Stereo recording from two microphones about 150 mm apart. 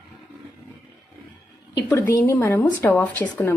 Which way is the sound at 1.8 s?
15° left (ahead or behind).